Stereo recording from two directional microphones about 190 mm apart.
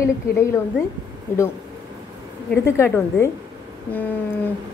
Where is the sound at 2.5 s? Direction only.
15° left (ahead or behind).